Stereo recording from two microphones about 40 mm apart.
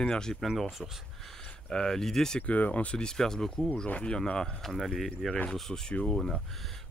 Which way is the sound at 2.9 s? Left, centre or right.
Centre.